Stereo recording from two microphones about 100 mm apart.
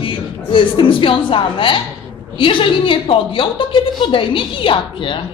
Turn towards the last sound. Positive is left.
turn(degrees=60)  # may be behind; listen again after turning